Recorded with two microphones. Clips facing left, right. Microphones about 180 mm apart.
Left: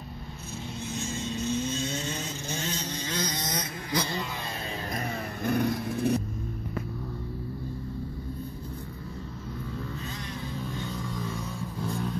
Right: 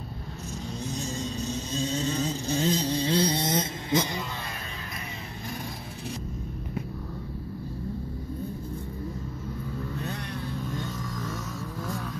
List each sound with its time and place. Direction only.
0.9 s vehicle: 40° right (ahead or behind); by 4.2 s 20° right (ahead or behind)
5.4 s vehicle: 60° left (ahead or behind)
11.0 s vehicle: 10° left (ahead or behind)